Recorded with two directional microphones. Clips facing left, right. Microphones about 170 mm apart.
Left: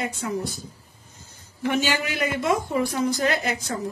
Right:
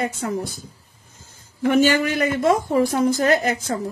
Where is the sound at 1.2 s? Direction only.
50° right (ahead or behind).